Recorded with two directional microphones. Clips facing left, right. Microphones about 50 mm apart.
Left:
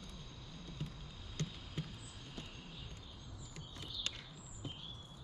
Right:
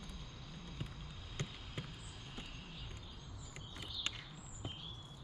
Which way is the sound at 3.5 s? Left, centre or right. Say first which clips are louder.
Right 1 dB; right.